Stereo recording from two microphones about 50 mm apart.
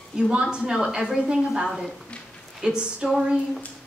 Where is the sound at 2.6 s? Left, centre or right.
Centre.